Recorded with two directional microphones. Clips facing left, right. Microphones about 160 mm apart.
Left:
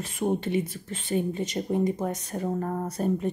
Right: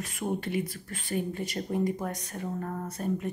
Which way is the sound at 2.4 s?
35° left (ahead or behind).